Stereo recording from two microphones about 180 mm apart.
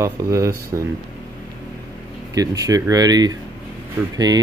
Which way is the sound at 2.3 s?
20° right (ahead or behind).